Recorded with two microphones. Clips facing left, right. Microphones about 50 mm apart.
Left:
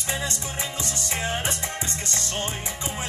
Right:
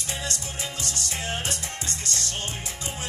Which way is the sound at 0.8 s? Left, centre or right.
Left.